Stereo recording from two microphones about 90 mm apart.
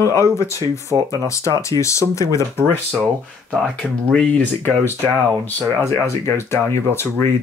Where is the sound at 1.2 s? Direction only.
35° left (ahead or behind).